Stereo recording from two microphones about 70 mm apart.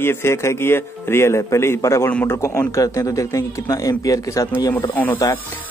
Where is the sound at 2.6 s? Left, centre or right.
Left.